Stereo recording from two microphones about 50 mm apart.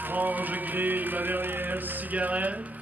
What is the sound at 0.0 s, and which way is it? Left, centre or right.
Music, right.